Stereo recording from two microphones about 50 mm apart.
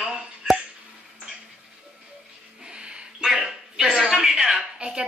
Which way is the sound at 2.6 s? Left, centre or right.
Centre.